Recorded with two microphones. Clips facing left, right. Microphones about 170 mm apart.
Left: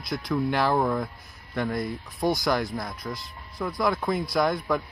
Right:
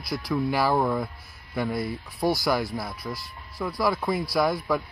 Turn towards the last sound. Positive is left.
turn(degrees=0)  # may be behind; listen again after turning